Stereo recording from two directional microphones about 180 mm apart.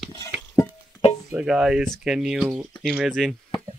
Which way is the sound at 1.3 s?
5° right (ahead or behind).